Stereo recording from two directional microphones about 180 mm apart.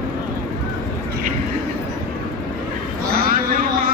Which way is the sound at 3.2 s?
55° right (ahead or behind).